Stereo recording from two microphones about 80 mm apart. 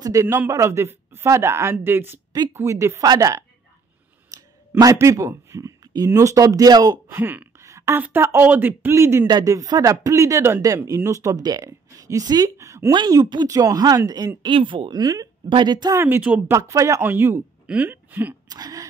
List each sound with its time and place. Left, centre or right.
0.0 s a woman's voice: right
7.1 s speech: right
7.5 s a sound: right
7.9 s speech: right
9.5 s speech: right
12.9 s speech: right
14.4 s speech: right
15.0 s speech: right
15.5 s speech: right
16.0 s speech: right
16.5 s a woman's voice: right
17.0 s speech: right
18.5 s speech: right